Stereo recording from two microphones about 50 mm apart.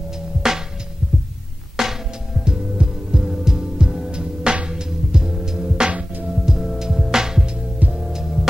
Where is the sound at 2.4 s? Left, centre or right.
Centre.